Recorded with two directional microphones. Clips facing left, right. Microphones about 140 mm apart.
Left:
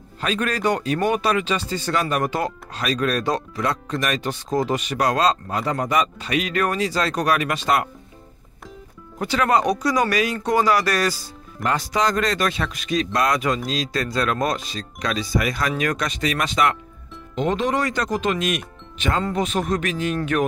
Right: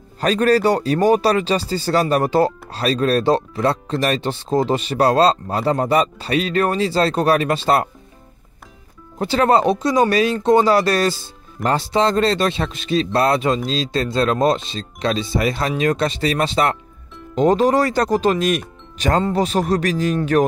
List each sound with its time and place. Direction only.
0.2 s speech: 35° right (ahead or behind)
9.2 s speech: 30° right (ahead or behind)